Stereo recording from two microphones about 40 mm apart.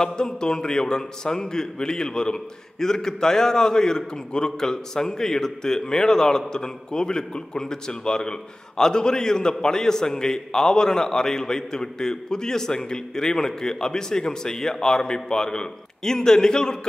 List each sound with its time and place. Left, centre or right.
0.0 s a man's voice: centre